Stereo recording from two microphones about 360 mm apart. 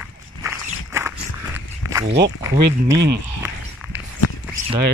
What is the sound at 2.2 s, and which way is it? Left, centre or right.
Speech, centre.